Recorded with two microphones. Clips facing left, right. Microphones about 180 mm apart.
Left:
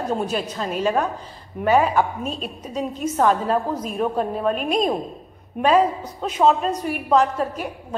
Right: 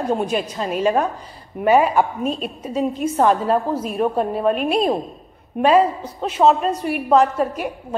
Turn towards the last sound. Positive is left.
turn(degrees=-5)  # may be behind; listen again after turning